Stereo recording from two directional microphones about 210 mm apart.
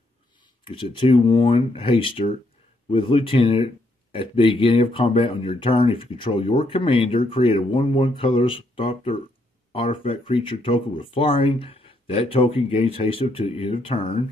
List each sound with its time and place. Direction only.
0.7 s speech: 25° left (ahead or behind)